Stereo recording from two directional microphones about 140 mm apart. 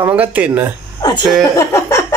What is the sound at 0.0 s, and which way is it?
Speech, 10° right (ahead or behind).